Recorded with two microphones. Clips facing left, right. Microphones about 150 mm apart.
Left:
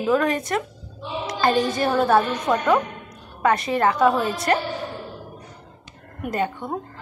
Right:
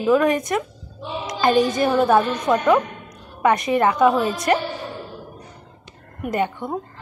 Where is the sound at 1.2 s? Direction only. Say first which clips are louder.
Right 3 dB; 15° right (ahead or behind).